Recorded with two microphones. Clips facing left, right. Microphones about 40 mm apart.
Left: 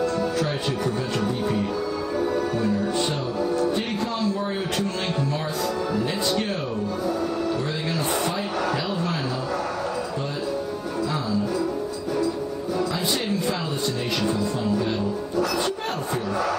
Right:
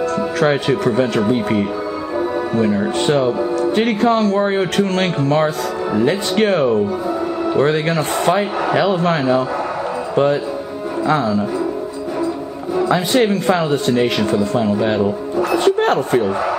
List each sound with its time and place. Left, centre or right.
0.0 s speech: right
3.0 s speech: right
12.8 s speech: right